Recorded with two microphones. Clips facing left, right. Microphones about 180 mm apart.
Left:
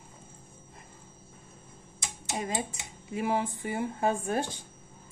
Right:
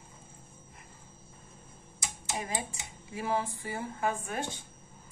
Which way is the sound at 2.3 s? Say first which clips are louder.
Left 4 dB; 25° left (ahead or behind).